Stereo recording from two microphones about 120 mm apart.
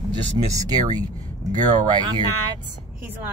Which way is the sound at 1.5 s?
35° right (ahead or behind).